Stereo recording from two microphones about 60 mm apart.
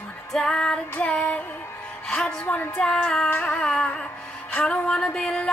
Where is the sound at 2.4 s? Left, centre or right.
Left.